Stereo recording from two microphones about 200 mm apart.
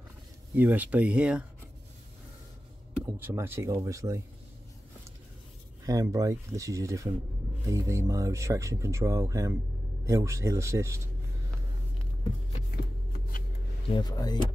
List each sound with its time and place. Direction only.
0.6 s speech: 10° right (ahead or behind)
3.1 s speech: 10° right (ahead or behind)
5.9 s speech: 15° right (ahead or behind)
13.8 s speech: 20° left (ahead or behind)